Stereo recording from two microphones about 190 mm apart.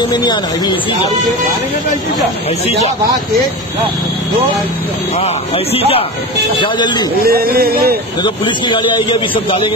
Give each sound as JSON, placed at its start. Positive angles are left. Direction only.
{"t": 0.1, "sound": "speech", "side_deg": 25}
{"t": 5.2, "sound": "speech", "side_deg": 30}
{"t": 7.2, "sound": "speech", "side_deg": -50}
{"t": 8.2, "sound": "speech", "side_deg": 25}